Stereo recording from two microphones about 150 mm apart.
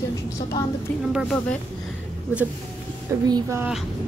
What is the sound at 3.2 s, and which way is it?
Speech, 25° right (ahead or behind).